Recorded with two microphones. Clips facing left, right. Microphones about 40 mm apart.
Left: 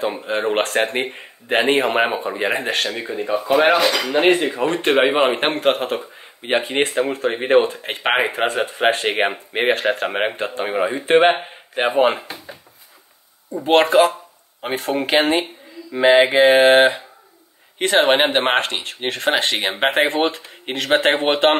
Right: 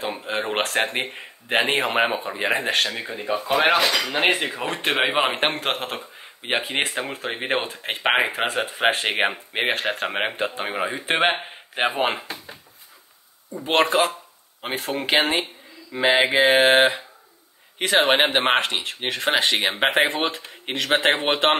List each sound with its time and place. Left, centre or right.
0.0 s a man's voice: centre
3.5 s cutlery: centre
3.8 s a man's voice: centre
4.1 s a man's voice: centre
13.7 s a man's voice: centre